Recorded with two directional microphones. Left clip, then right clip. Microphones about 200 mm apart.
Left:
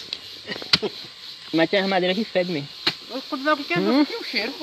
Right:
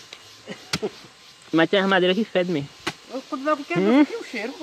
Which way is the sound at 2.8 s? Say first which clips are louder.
Left 5 dB; 10° right (ahead or behind).